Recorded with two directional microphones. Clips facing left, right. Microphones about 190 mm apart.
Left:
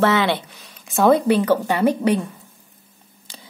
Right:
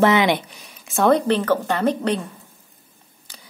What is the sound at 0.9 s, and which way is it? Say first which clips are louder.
Speech: left 2 dB; centre (ahead or behind).